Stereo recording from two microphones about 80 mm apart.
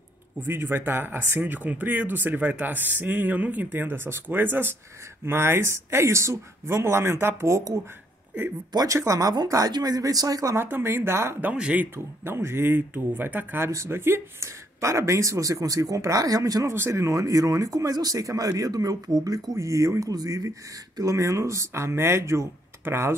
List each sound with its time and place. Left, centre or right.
0.4 s speech: right
10.5 s speech: right
11.4 s speech: centre
11.9 s speech: right
13.7 s speech: right